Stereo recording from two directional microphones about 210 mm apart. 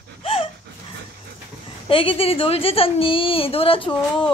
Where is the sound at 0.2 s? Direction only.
25° left (ahead or behind).